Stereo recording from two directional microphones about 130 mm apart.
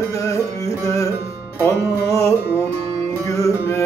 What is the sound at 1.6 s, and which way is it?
Music, 25° left (ahead or behind).